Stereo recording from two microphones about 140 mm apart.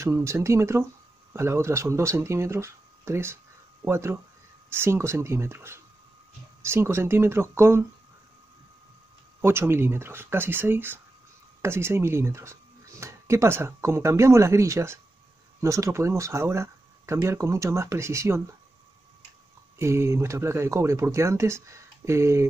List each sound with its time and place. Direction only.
0.0 s speech: 20° right (ahead or behind)
9.4 s speech: 15° right (ahead or behind)
19.8 s speech: 20° right (ahead or behind)